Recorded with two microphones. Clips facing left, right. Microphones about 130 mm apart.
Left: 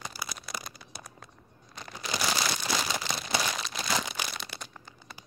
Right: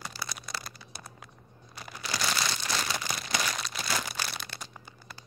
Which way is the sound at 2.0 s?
10° left (ahead or behind).